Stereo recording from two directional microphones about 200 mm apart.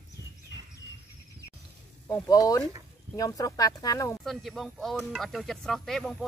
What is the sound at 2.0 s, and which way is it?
Speech, 15° left (ahead or behind).